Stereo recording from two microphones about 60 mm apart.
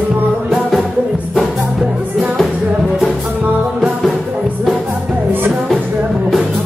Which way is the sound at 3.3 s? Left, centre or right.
Right.